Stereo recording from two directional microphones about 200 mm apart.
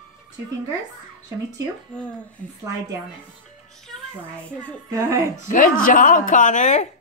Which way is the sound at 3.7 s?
Centre (ahead or behind).